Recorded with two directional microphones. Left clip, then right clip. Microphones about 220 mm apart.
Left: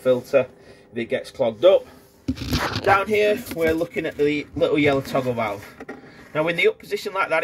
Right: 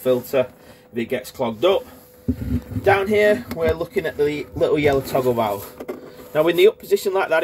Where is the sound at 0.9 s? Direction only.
20° right (ahead or behind).